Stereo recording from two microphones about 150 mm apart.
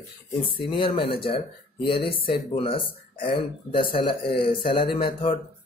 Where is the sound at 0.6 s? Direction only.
35° left (ahead or behind).